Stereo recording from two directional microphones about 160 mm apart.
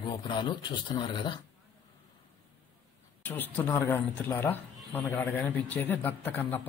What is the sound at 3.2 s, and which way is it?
Speech, 10° left (ahead or behind).